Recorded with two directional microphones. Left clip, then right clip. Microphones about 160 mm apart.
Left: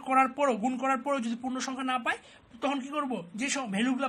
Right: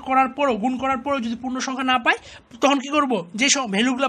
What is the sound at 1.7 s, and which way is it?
A man's voice, 30° right (ahead or behind).